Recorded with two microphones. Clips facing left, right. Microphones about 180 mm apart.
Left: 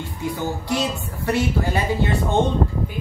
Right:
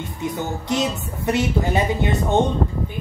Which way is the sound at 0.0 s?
20° right (ahead or behind).